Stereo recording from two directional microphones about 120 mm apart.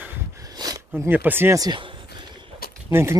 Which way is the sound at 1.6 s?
40° right (ahead or behind).